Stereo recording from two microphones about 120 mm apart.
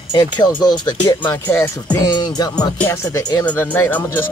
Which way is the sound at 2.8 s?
20° left (ahead or behind).